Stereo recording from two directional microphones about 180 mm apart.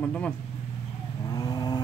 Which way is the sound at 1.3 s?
20° left (ahead or behind).